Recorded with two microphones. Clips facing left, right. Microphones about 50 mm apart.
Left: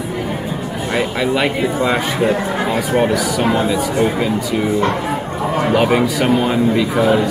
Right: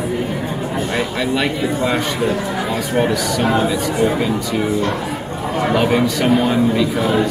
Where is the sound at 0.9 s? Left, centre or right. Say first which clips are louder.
Left 5 dB; centre.